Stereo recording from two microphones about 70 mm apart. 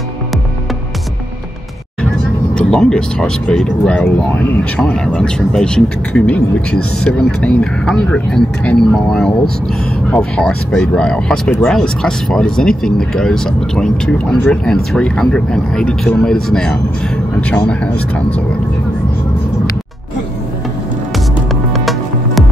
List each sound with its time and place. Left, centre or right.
2.5 s speech: centre
10.3 s speech: centre
21.7 s music: centre